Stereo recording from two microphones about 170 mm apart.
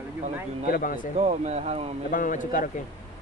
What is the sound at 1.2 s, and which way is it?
Speech, 40° right (ahead or behind).